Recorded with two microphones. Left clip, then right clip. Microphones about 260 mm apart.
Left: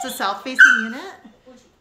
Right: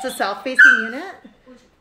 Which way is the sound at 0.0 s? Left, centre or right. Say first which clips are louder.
Right 1 dB; centre.